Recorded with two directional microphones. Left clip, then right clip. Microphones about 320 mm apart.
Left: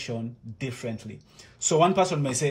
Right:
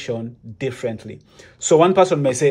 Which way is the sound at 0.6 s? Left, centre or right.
Centre.